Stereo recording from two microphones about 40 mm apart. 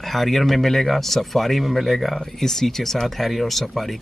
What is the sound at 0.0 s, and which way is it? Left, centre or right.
A man's voice, centre.